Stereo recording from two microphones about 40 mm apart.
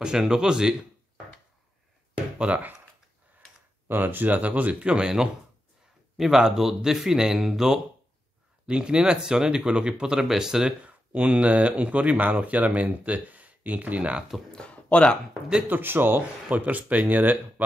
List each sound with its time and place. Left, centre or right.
0.0 s speech: centre
2.3 s speech: right
3.9 s speech: right
4.8 s speech: right
8.6 s speech: right
10.8 s speech: right
14.7 s a sound: left
15.7 s speech: right
16.4 s speech: right